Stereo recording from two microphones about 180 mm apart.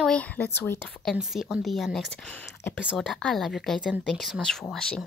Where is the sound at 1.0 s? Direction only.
Centre (ahead or behind).